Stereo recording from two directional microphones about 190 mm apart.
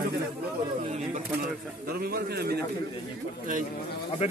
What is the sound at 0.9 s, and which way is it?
Speech, 45° right (ahead or behind).